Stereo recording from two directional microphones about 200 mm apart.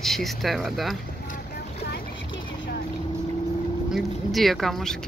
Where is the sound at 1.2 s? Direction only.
45° left (ahead or behind).